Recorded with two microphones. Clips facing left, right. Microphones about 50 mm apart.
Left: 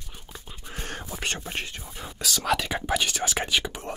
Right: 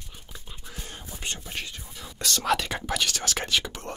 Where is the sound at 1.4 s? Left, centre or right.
Left.